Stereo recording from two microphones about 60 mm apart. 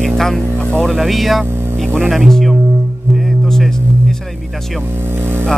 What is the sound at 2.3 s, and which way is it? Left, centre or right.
Music, centre.